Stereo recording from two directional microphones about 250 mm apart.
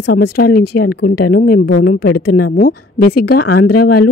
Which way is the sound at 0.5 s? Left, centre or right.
Left.